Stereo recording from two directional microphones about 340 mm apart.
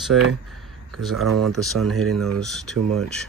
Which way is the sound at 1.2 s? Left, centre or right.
Right.